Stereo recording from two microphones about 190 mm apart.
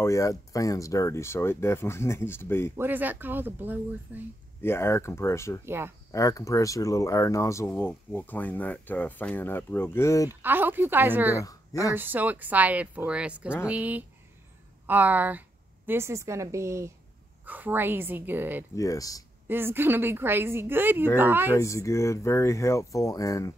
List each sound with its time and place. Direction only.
0.0 s speech: 15° left (ahead or behind)
2.7 s a woman's voice: 10° right (ahead or behind)
4.6 s speech: 15° left (ahead or behind)
5.7 s a woman's voice: 10° right (ahead or behind)
6.1 s speech: 15° left (ahead or behind)
10.4 s a woman's voice: 10° right (ahead or behind)
18.8 s speech: 15° left (ahead or behind)
19.4 s a woman's voice: 10° right (ahead or behind)
21.5 s speech: 15° left (ahead or behind)